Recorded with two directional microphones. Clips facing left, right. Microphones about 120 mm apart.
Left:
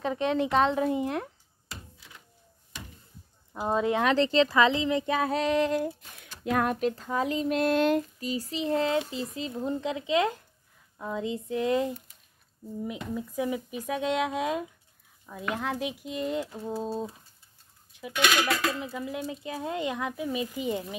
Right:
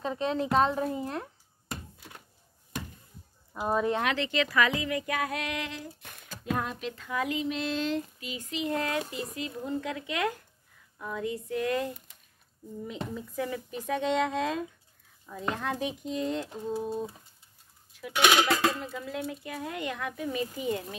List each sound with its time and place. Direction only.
0.0 s a child's voice: centre (ahead or behind)
1.7 s thunk: 50° right (ahead or behind)
3.5 s speech: 20° left (ahead or behind)
4.0 s speech: 35° left (ahead or behind)
6.4 s speech: 65° left (ahead or behind)
6.9 s speech: 35° left (ahead or behind)
7.4 s a sound: 50° left (ahead or behind)
8.2 s speech: 35° left (ahead or behind); by 11.9 s 20° left (ahead or behind)
13.1 s a child's voice: 15° left (ahead or behind)
16.6 s speech: 25° left (ahead or behind)
18.2 s speech: 20° right (ahead or behind)
18.8 s speech: 15° left (ahead or behind)